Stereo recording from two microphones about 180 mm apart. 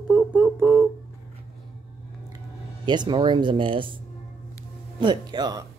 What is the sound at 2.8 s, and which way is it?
Speech, 25° right (ahead or behind).